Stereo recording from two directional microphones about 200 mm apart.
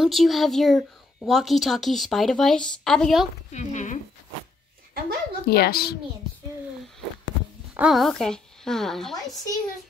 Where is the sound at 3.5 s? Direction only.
35° left (ahead or behind).